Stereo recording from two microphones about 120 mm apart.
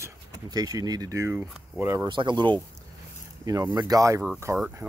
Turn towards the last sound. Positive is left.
turn(degrees=-25)  # may be behind; listen again after turning